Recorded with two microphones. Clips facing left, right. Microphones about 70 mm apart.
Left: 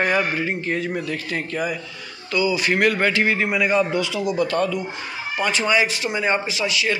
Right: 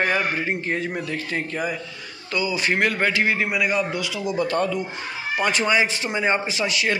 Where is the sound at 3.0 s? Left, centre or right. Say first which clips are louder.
Left 2 dB; centre.